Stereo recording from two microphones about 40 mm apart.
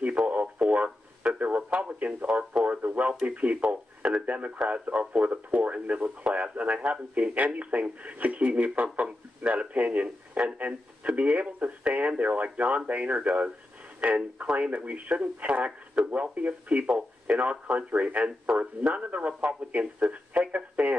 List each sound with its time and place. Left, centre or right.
0.0 s radio: right
1.4 s speech: right